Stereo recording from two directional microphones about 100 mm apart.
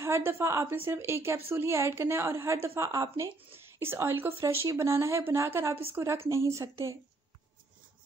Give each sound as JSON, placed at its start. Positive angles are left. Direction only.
{"t": 0.0, "sound": "a woman's voice", "side_deg": -25}